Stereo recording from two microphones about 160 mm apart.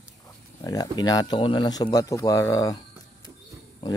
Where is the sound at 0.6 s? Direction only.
20° left (ahead or behind).